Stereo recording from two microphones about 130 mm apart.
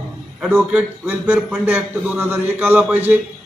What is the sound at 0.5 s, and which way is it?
A man's voice, 15° right (ahead or behind).